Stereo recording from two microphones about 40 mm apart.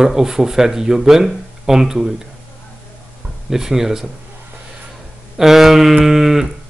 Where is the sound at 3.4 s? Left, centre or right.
Centre.